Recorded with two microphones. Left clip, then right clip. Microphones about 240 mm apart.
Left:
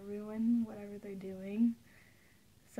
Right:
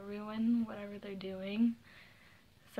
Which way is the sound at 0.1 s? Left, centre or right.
Centre.